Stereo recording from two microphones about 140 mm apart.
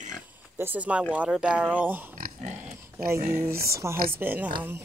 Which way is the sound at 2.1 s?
80° right.